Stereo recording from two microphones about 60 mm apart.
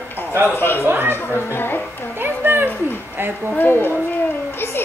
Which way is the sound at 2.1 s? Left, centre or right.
Right.